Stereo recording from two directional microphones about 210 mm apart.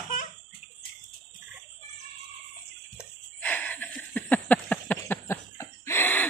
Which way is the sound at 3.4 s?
5° left (ahead or behind).